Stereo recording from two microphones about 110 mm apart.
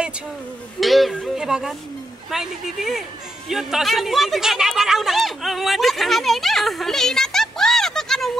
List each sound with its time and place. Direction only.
0.7 s a man's voice: centre (ahead or behind)